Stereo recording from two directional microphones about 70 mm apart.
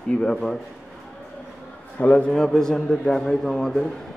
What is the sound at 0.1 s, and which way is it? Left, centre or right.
Speech, centre.